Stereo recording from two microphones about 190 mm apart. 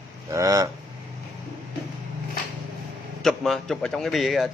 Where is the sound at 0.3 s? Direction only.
15° right (ahead or behind).